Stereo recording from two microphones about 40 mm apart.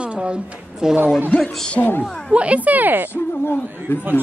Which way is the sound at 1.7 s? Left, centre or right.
Left.